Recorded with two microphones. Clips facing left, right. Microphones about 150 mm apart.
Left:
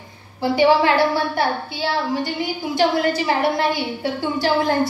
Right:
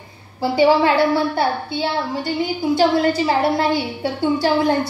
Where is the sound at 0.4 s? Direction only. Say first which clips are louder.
Right 1 dB; 25° right (ahead or behind).